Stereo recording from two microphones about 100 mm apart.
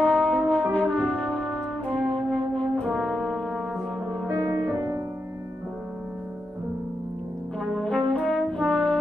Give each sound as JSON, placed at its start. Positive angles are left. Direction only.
{"t": 0.0, "sound": "brass instrument", "side_deg": 10}
{"t": 4.7, "sound": "music", "side_deg": -40}
{"t": 7.6, "sound": "brass instrument", "side_deg": 5}